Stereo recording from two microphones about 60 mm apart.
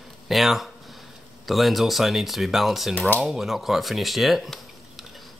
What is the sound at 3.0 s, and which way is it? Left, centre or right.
Speech, left.